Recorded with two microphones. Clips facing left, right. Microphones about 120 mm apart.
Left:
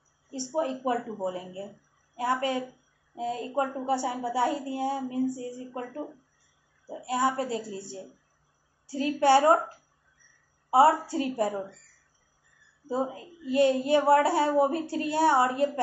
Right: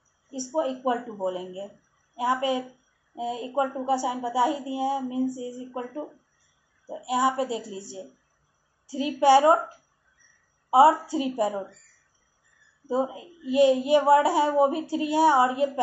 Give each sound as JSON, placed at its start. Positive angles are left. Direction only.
{"t": 0.3, "sound": "a woman's voice", "side_deg": -10}
{"t": 8.9, "sound": "a woman's voice", "side_deg": -15}
{"t": 10.7, "sound": "a woman's voice", "side_deg": -15}
{"t": 12.8, "sound": "a woman's voice", "side_deg": -15}